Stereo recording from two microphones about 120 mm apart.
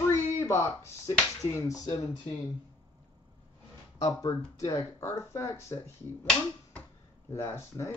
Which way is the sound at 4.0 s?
30° left (ahead or behind).